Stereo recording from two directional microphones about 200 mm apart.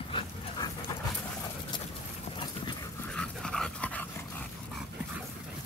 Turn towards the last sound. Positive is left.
turn(degrees=5)  # may be behind; listen again after turning